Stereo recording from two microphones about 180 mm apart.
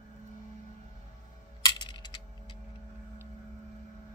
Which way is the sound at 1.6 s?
25° left (ahead or behind).